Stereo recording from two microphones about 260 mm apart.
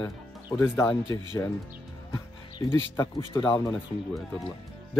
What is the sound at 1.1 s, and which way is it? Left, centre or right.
Speech, centre.